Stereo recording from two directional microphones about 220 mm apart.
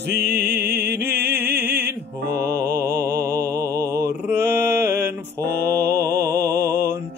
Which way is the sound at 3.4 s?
15° right (ahead or behind).